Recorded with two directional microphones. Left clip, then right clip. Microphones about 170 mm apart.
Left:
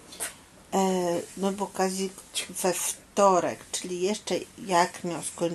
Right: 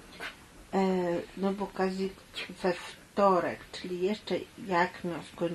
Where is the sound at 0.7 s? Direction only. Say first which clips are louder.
Left 3 dB; 15° left (ahead or behind).